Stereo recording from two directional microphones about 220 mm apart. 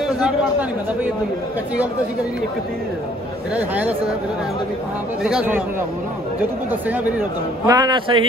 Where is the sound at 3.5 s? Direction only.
5° right (ahead or behind).